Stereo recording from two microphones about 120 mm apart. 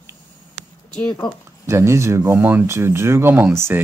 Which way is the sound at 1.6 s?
25° right (ahead or behind).